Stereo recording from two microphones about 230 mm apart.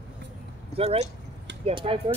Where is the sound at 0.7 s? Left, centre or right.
Right.